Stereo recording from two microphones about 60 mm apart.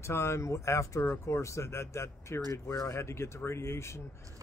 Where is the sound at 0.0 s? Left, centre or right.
Left.